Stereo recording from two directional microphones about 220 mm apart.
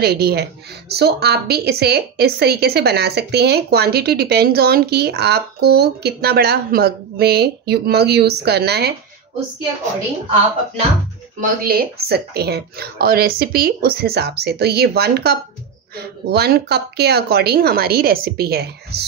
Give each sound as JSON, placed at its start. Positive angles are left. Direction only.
{"t": 0.0, "sound": "a woman's voice", "side_deg": -45}
{"t": 11.6, "sound": "a woman's voice", "side_deg": -45}